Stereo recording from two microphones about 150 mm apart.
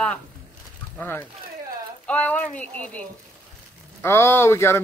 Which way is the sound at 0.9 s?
15° left (ahead or behind).